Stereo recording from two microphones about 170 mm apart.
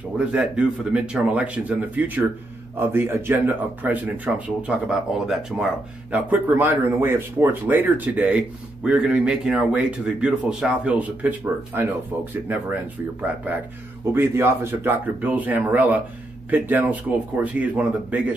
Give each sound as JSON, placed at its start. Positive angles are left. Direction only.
{"t": 0.2, "sound": "speech", "side_deg": -5}
{"t": 14.1, "sound": "speech", "side_deg": -15}